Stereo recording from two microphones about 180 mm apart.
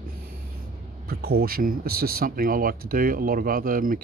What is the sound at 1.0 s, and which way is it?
Speech, 60° right (ahead or behind).